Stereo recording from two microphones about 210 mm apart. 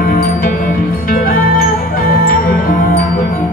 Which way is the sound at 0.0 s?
45° left (ahead or behind).